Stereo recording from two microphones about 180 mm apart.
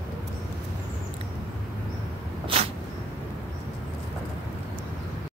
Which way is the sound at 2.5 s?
30° right (ahead or behind).